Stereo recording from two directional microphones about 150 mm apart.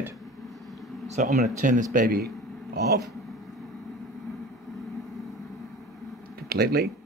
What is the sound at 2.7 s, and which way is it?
Speech, 90° right.